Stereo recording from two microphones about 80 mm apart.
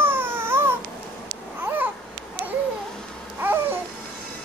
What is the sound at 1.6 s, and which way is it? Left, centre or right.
Babbling, right.